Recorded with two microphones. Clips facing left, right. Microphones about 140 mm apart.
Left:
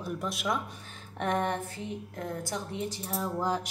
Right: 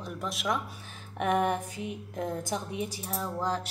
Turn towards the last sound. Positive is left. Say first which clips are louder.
# left 1 dB
turn(degrees=5)  # may be behind; listen again after turning